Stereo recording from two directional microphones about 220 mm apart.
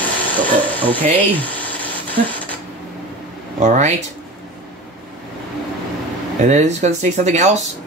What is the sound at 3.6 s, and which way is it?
Speech, 35° right (ahead or behind).